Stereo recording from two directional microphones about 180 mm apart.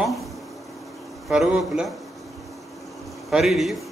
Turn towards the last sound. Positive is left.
turn(degrees=0)  # may be behind; listen again after turning